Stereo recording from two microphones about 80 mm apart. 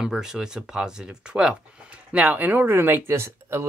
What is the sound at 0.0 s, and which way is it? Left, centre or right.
Speech, centre.